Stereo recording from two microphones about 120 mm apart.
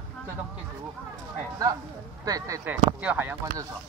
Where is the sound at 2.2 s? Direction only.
30° right (ahead or behind).